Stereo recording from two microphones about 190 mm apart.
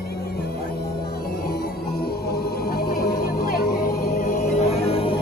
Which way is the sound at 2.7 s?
55° left (ahead or behind).